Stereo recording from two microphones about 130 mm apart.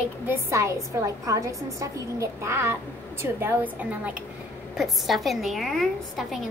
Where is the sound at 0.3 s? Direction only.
20° right (ahead or behind).